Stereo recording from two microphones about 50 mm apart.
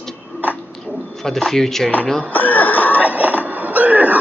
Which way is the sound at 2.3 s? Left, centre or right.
Left.